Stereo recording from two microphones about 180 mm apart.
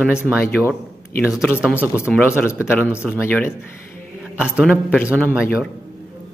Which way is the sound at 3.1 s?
10° left (ahead or behind).